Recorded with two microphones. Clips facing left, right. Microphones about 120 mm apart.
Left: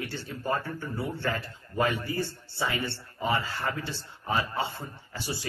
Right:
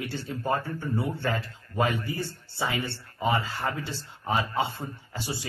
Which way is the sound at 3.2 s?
25° right (ahead or behind).